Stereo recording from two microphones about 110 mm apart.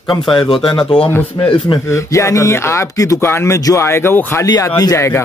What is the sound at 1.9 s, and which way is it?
Speech, 30° left (ahead or behind).